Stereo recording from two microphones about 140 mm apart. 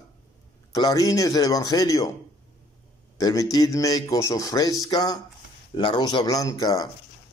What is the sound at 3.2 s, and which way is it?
A man's voice, 25° left (ahead or behind).